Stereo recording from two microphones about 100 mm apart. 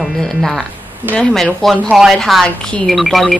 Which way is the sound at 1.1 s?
5° left (ahead or behind).